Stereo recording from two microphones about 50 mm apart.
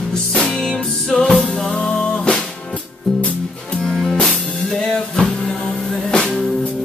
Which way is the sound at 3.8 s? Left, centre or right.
Centre.